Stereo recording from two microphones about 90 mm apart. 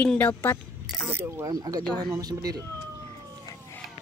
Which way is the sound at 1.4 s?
45° right (ahead or behind).